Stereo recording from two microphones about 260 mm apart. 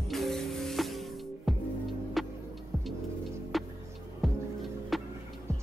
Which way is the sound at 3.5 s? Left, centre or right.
Centre.